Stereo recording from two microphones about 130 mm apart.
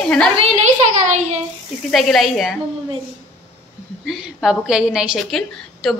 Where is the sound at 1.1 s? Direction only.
65° right (ahead or behind).